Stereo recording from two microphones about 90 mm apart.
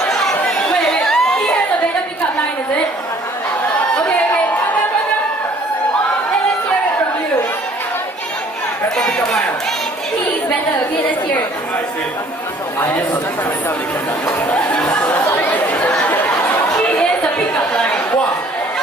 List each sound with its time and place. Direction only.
0.0 s chatter: 5° left (ahead or behind)
8.9 s chatter: 5° left (ahead or behind)
14.2 s chatter: 20° left (ahead or behind)